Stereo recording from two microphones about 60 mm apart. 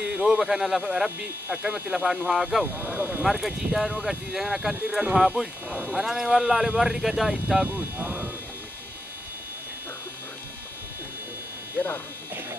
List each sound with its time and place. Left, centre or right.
0.0 s speech: centre
1.5 s speech: centre
2.2 s speech: centre
2.7 s speech: left
3.0 s speech: centre
3.3 s speech: centre
7.6 s speech: right